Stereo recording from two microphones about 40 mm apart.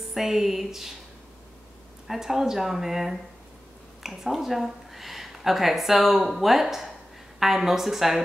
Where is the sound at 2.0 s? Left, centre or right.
Centre.